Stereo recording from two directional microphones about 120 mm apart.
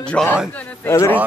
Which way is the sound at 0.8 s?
20° left (ahead or behind).